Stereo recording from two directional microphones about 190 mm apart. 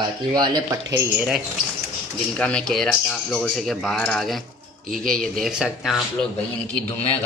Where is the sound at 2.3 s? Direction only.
5° left (ahead or behind).